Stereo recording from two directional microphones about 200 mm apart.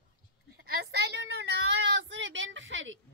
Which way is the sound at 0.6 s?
50° right (ahead or behind).